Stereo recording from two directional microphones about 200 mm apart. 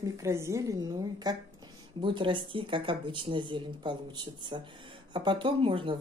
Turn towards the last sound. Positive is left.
turn(degrees=-25)  # may be behind; listen again after turning